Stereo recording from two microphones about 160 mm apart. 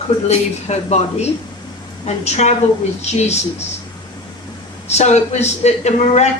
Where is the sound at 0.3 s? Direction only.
45° left (ahead or behind).